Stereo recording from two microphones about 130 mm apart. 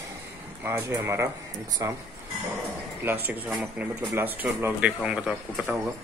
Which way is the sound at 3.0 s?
15° right (ahead or behind).